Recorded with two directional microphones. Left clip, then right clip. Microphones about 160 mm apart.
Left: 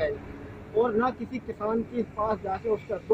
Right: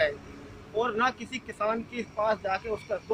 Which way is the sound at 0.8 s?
30° right (ahead or behind).